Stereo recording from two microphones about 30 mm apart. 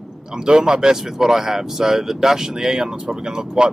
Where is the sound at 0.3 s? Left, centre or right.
Right.